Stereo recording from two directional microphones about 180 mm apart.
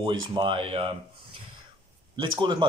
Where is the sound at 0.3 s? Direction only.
30° right (ahead or behind).